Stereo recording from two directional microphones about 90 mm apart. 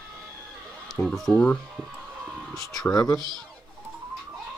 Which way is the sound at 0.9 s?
5° left (ahead or behind).